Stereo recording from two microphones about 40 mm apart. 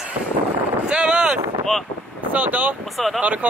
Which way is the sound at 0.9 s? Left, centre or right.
Right.